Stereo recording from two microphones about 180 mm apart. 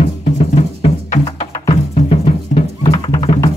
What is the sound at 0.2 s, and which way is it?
Music, 35° left (ahead or behind).